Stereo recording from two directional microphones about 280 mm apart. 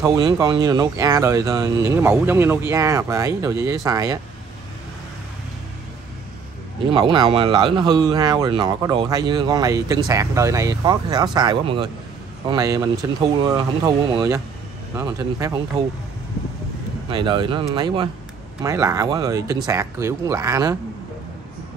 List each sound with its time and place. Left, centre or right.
0.0 s speech: centre
6.9 s speech: centre
17.1 s speech: centre